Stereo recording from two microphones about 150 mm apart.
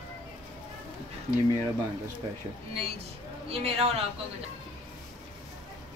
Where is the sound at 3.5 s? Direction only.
40° right (ahead or behind).